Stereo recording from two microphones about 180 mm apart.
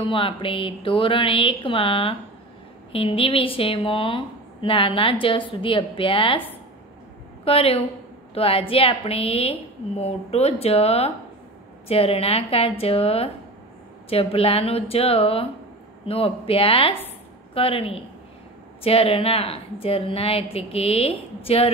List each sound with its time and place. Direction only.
0.0 s a woman's voice: 30° left (ahead or behind)
7.4 s a woman's voice: 30° left (ahead or behind)